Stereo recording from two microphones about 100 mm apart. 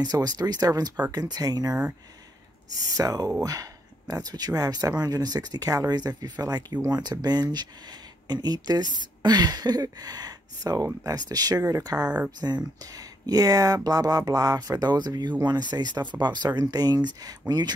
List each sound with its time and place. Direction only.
0.0 s speech: 40° right (ahead or behind)